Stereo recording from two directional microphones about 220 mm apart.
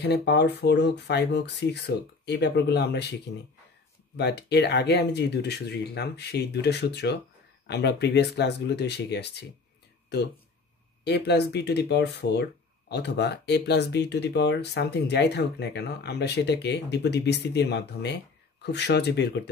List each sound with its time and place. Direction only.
0.0 s speech: 50° left (ahead or behind)
4.2 s speech: 50° left (ahead or behind)
11.1 s speech: 50° left (ahead or behind)